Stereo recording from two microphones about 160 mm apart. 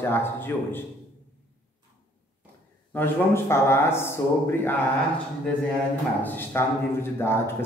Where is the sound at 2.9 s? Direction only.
15° left (ahead or behind).